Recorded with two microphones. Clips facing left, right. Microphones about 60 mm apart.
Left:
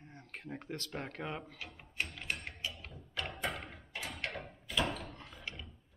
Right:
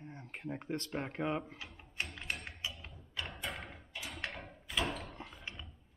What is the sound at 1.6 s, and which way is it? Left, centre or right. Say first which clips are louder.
Speech: left 2 dB; left.